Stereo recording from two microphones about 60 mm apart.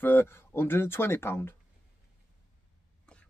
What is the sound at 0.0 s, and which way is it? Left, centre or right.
Speech, left.